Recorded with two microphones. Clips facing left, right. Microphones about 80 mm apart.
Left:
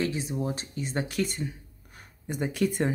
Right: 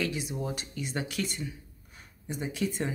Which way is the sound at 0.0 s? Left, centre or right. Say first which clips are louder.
Left 3 dB; left.